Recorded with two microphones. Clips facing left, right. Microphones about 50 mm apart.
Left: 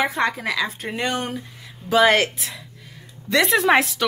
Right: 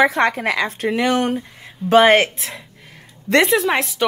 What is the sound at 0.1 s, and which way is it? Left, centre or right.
Speech, right.